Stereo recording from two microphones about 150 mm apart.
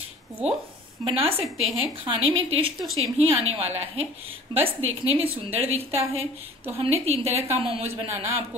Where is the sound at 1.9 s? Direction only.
35° right (ahead or behind).